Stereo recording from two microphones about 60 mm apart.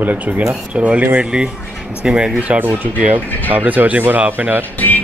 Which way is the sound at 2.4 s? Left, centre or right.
Right.